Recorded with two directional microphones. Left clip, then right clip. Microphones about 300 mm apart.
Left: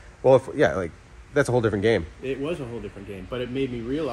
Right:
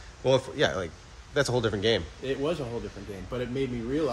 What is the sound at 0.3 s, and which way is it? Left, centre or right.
Speech, left.